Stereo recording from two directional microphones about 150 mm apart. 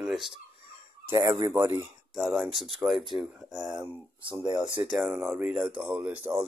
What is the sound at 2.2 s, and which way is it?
Speech, centre (ahead or behind).